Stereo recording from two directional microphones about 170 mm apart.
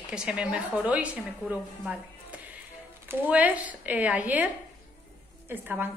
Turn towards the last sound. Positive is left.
turn(degrees=-10)  # may be behind; listen again after turning